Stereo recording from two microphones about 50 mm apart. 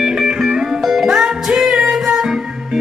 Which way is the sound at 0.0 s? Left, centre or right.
Centre.